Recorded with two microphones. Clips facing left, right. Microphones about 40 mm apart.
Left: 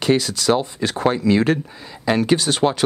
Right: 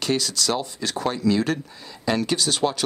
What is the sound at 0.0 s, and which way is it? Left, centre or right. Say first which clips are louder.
Speech: left 6 dB; left.